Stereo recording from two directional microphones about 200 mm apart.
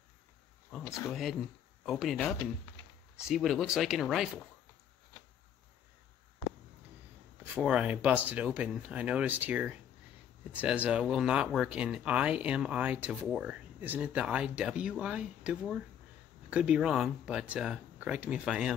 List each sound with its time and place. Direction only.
0.8 s speech: 15° left (ahead or behind)
1.9 s speech: centre (ahead or behind)
7.5 s speech: 5° right (ahead or behind)